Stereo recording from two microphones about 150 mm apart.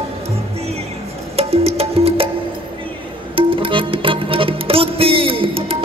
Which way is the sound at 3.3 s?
35° right (ahead or behind).